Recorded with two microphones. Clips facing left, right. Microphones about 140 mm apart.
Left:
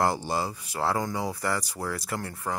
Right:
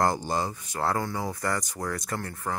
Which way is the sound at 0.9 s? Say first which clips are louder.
Left 1 dB; 15° left (ahead or behind).